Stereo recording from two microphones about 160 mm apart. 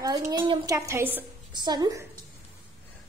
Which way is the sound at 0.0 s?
25° right (ahead or behind).